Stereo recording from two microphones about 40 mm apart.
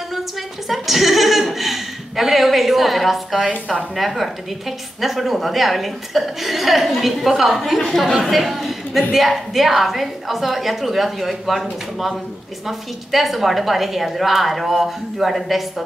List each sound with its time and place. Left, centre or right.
0.7 s chuckle: centre
3.3 s a woman's voice: right
3.9 s a woman's voice: centre
12.6 s a woman's voice: centre